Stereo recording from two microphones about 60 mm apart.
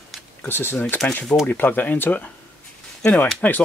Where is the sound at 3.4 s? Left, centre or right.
Left.